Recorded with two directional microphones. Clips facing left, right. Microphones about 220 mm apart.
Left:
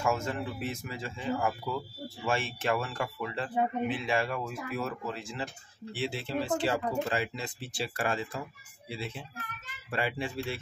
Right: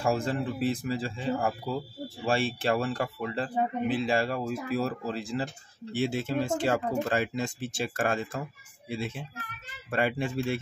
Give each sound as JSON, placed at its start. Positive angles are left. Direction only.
{"t": 0.0, "sound": "a child's voice", "side_deg": -35}